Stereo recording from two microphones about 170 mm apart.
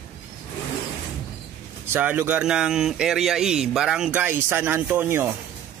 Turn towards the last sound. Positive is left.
turn(degrees=-10)  # may be behind; listen again after turning